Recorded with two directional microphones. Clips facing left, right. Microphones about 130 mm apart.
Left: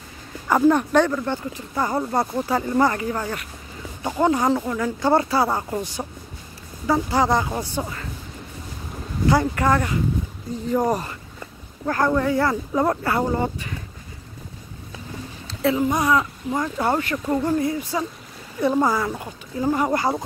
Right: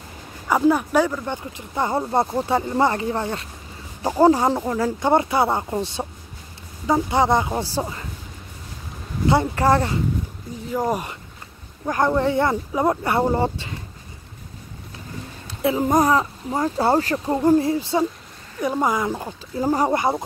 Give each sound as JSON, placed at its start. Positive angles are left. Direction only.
{"t": 0.5, "sound": "speech", "side_deg": -5}
{"t": 5.0, "sound": "speech", "side_deg": -20}
{"t": 9.3, "sound": "speech", "side_deg": -25}
{"t": 10.7, "sound": "speech", "side_deg": -5}
{"t": 11.8, "sound": "speech", "side_deg": -15}
{"t": 12.7, "sound": "speech", "side_deg": -10}
{"t": 13.0, "sound": "speech", "side_deg": -25}
{"t": 15.4, "sound": "a sound", "side_deg": -20}
{"t": 15.8, "sound": "speech", "side_deg": -40}
{"t": 18.6, "sound": "speech", "side_deg": -10}
{"t": 20.0, "sound": "speech", "side_deg": -20}